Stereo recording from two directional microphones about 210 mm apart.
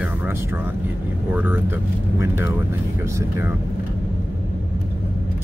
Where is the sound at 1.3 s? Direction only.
10° right (ahead or behind).